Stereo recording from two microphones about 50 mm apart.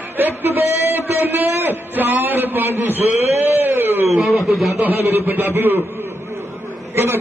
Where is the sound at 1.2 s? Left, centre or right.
Right.